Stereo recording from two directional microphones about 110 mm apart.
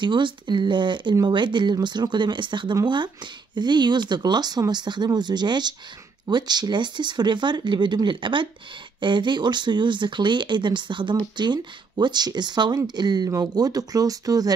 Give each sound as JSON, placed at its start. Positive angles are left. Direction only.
{"t": 0.0, "sound": "speech", "side_deg": -45}